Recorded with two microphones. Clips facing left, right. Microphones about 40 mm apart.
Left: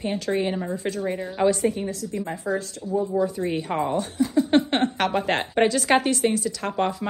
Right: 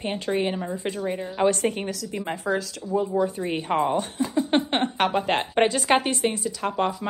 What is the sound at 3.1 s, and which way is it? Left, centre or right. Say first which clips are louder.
Speech: left 1 dB; right.